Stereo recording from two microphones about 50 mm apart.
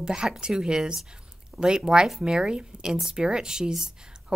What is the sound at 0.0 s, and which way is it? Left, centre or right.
A woman's voice, centre.